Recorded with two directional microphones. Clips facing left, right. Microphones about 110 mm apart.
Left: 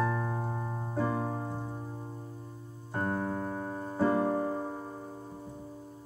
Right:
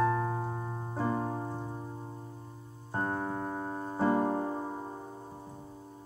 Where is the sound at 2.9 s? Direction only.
25° right (ahead or behind).